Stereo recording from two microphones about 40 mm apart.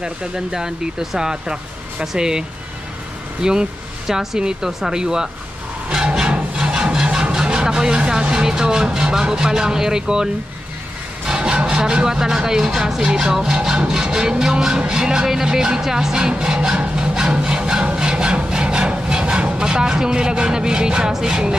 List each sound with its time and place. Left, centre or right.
0.0 s speech: centre
4.1 s speech: centre
5.9 s a sound: centre
6.5 s wood: centre
7.3 s speech: centre
17.9 s wood: right
21.1 s speech: centre